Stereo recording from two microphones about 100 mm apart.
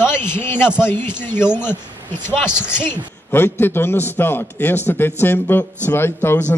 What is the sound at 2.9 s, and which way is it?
A man's voice, 20° left (ahead or behind).